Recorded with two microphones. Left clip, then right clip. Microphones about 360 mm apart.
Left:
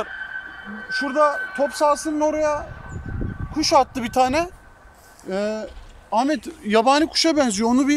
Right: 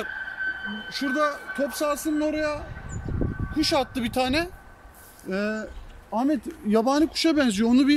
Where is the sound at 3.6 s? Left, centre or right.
Centre.